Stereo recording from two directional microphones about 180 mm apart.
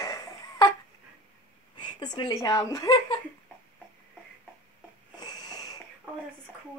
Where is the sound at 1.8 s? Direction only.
25° left (ahead or behind).